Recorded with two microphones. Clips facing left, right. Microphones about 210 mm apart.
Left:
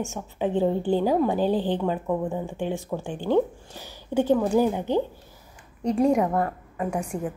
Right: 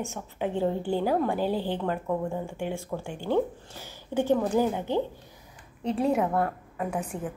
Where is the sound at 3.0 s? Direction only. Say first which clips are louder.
Left 4 dB; 10° right (ahead or behind).